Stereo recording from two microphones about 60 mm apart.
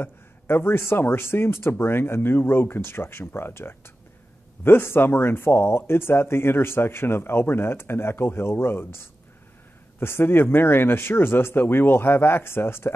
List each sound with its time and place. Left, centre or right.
0.0 s speech: left